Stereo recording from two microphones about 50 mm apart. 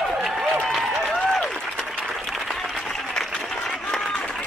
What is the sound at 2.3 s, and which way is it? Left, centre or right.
Applause, centre.